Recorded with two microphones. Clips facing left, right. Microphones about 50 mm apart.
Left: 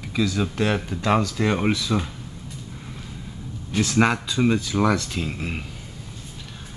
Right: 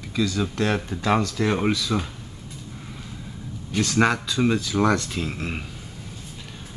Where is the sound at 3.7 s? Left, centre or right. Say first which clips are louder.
Left 1 dB; centre.